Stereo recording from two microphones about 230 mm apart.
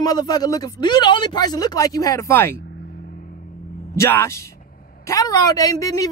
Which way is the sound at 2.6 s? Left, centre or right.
Left.